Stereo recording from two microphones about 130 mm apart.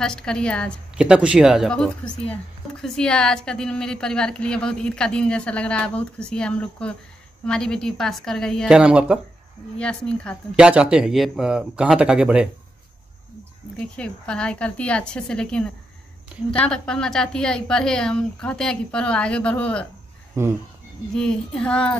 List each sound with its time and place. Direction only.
0.0 s a woman's voice: 5° left (ahead or behind)
0.9 s speech: 10° right (ahead or behind)
1.7 s a woman's voice: 5° left (ahead or behind)
8.6 s speech: 10° right (ahead or behind)
9.8 s a woman's voice: 10° left (ahead or behind)
10.5 s speech: 5° right (ahead or behind)
13.9 s a woman's voice: 10° left (ahead or behind)
20.4 s speech: 20° right (ahead or behind)
21.1 s a woman's voice: 5° left (ahead or behind)